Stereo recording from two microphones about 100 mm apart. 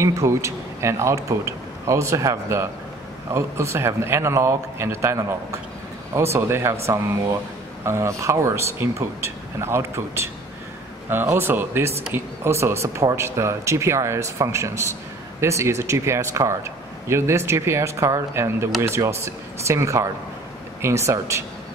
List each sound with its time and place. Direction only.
0.0 s speech: 30° right (ahead or behind)
7.8 s speech: 30° right (ahead or behind)